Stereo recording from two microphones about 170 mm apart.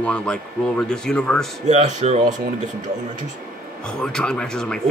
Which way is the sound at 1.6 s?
40° right (ahead or behind).